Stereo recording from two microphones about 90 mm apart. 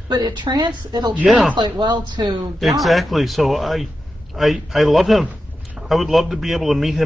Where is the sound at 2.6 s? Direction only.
Centre (ahead or behind).